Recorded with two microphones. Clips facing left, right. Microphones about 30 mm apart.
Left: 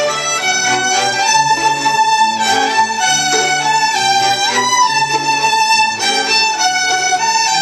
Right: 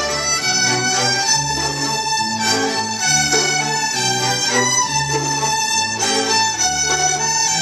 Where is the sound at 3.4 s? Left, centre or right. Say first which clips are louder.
Left 4 dB; left.